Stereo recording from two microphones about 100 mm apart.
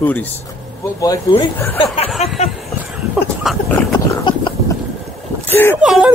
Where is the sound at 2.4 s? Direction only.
90° left.